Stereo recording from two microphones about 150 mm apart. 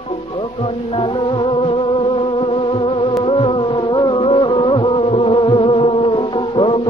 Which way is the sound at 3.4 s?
35° left (ahead or behind).